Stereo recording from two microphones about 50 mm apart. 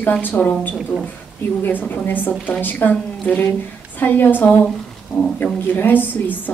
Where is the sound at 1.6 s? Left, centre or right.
Left.